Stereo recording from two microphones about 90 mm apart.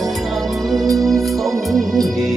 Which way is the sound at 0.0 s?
Centre (ahead or behind).